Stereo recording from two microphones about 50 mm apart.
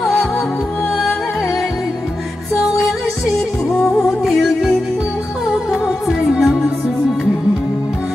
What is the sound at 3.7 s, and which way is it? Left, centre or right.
Music, centre.